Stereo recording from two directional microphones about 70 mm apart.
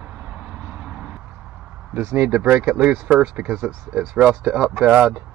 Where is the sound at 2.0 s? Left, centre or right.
Right.